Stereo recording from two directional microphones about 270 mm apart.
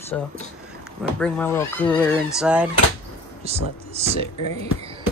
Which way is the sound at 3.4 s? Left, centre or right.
Right.